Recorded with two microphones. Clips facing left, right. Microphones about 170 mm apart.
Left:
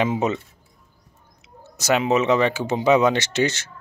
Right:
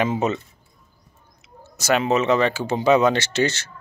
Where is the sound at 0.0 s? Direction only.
15° left (ahead or behind).